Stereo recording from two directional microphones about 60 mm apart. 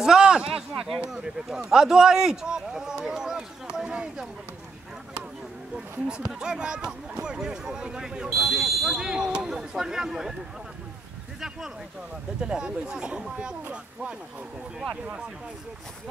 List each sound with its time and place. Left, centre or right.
0.0 s a sound: centre
1.1 s a man's voice: centre
6.4 s a man's voice: centre
8.3 s a man's voice: centre
12.4 s a man's voice: centre